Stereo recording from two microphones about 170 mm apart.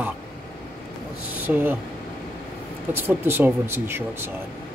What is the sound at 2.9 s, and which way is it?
Speech, 10° right (ahead or behind).